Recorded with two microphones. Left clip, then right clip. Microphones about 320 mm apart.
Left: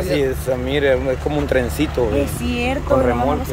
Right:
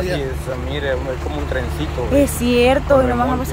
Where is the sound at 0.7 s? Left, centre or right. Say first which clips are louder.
Left 5 dB; left.